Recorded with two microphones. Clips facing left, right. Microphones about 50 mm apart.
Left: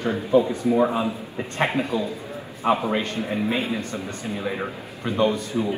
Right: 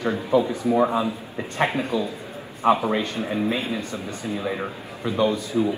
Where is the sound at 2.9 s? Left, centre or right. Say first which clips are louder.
Even; left.